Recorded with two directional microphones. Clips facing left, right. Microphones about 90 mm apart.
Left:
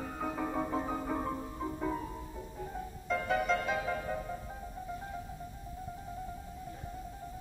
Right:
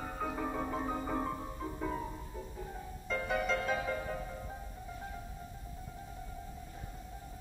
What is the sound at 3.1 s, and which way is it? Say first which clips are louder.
Music: left 3 dB; centre (ahead or behind).